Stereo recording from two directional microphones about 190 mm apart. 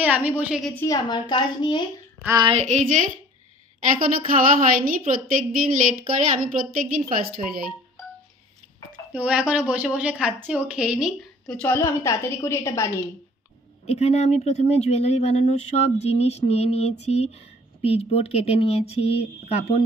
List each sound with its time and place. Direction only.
0.0 s a woman's voice: 10° right (ahead or behind)
0.7 s a woman's voice: 20° left (ahead or behind)
2.2 s a sound: 20° right (ahead or behind)
2.5 s speech: 40° right (ahead or behind)
9.1 s a woman's voice: 5° right (ahead or behind); by 12.9 s 15° left (ahead or behind)
13.8 s speech: 35° left (ahead or behind)